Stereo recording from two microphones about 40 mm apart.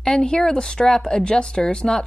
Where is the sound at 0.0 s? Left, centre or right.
Centre.